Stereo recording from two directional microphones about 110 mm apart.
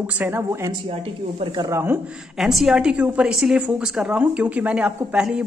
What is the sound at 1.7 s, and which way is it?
Speech, 20° right (ahead or behind).